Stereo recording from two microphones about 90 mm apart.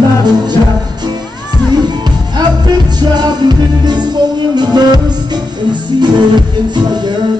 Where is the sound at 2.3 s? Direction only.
50° right (ahead or behind).